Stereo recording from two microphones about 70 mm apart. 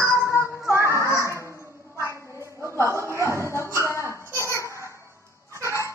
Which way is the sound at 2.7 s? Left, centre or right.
Right.